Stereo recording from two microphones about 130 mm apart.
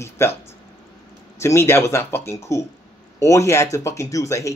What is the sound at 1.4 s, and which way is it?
Speech, 20° left (ahead or behind).